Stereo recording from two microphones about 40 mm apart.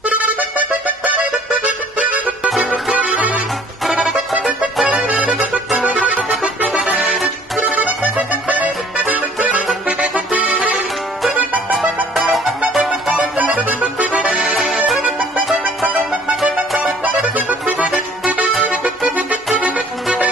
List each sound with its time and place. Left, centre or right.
0.0 s accordion: right
2.9 s music: right
4.1 s music: centre
5.9 s music: right
7.7 s music: right
12.1 s music: centre
13.6 s accordion: right
17.0 s music: right
18.7 s accordion: right